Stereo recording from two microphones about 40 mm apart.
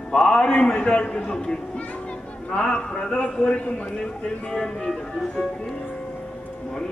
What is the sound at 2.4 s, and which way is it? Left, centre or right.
A man's voice, left.